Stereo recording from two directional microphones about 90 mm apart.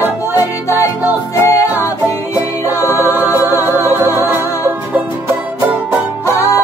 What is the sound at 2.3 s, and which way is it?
Music, 30° left (ahead or behind).